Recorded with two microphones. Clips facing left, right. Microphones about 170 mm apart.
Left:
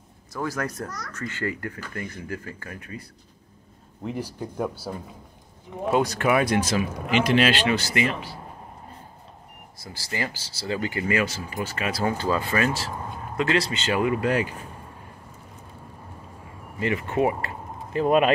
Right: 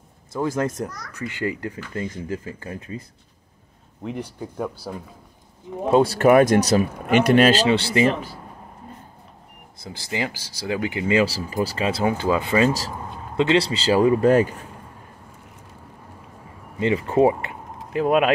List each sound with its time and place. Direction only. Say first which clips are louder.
0.3 s speech: right 6 dB; 25° right (ahead or behind)
4.0 s speech: right 1 dB; centre (ahead or behind)
5.9 s speech: right 5 dB; 30° right (ahead or behind)
6.2 s speech: right 7 dB; 45° right (ahead or behind)
7.6 s speech: right 5 dB; 30° right (ahead or behind)
8.0 s speech: right 6 dB; 45° right (ahead or behind)
9.8 s speech: right 4 dB; 20° right (ahead or behind)
12.1 s speech: right 2 dB; 15° right (ahead or behind); by 14.5 s 40° right (ahead or behind)
16.8 s speech: right 6 dB; 25° right (ahead or behind)
17.9 s speech: right 1 dB; 5° right (ahead or behind)